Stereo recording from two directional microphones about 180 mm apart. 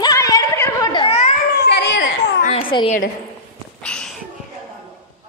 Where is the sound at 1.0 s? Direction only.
35° left (ahead or behind).